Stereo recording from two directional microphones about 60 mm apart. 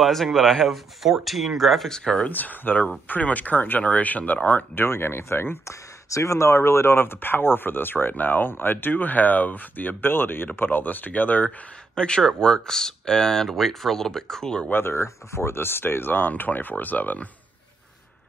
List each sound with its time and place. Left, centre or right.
0.0 s speech: centre
2.3 s speech: left
4.7 s speech: left
5.7 s speech: left
11.9 s speech: centre
14.7 s speech: left